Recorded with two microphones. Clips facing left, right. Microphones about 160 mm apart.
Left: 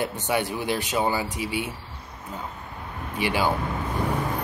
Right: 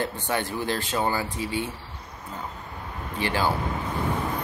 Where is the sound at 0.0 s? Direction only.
15° left (ahead or behind).